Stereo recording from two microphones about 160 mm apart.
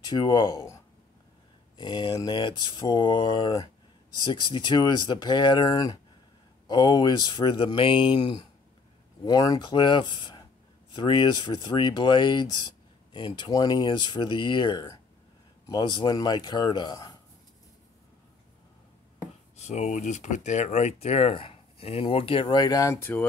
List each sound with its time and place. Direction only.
0.0 s speech: 25° left (ahead or behind)
1.8 s speech: 25° left (ahead or behind)
19.5 s speech: 45° left (ahead or behind); by 23.2 s 15° left (ahead or behind)